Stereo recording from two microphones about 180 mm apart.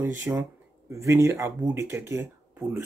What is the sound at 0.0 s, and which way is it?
Speech, 10° right (ahead or behind).